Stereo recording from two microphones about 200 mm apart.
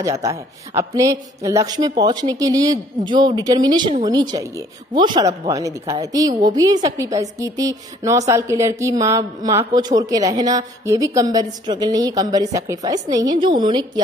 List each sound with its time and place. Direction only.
0.0 s a woman's voice: 15° right (ahead or behind)